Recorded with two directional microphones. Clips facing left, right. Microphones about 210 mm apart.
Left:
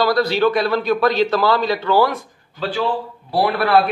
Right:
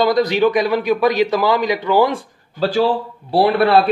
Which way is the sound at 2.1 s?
40° right (ahead or behind).